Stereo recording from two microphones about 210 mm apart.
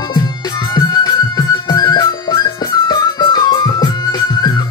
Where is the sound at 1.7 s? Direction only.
20° left (ahead or behind).